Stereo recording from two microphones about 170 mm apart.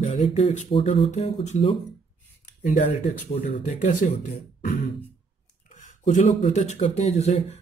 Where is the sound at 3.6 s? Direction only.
45° left (ahead or behind).